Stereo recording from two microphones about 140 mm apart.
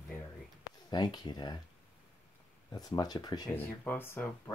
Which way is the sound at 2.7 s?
25° left (ahead or behind).